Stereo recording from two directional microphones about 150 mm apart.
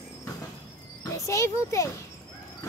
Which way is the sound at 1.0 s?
20° left (ahead or behind).